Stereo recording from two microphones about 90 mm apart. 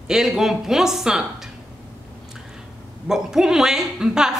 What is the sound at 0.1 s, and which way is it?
A man's voice, 5° right (ahead or behind).